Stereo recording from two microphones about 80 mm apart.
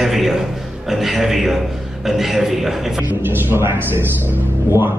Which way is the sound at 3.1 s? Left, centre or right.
Right.